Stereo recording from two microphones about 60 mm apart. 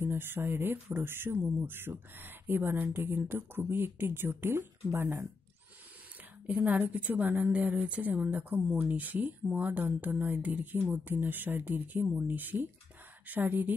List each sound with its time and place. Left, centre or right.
0.0 s speech: right
6.4 s speech: right